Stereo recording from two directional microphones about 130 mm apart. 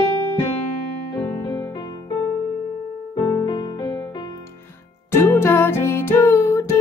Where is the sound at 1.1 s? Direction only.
25° left (ahead or behind).